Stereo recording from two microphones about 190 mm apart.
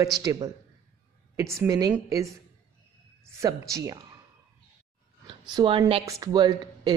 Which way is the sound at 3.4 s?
15° right (ahead or behind).